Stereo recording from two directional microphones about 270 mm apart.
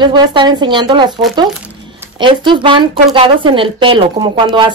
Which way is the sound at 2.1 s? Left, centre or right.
Centre.